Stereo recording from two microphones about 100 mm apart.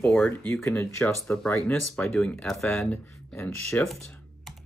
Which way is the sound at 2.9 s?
20° left (ahead or behind).